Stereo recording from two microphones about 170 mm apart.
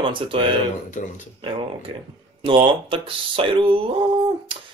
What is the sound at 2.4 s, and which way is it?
Speech, 30° right (ahead or behind).